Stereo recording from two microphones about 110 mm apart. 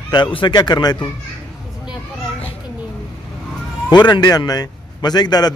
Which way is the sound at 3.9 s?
40° left (ahead or behind).